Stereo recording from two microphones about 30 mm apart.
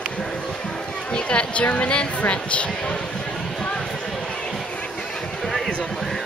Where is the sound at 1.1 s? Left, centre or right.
Left.